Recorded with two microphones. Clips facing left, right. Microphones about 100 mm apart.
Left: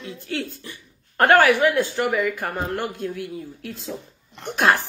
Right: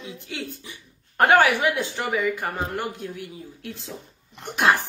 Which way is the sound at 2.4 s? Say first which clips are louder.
Left 2 dB; 70° left (ahead or behind).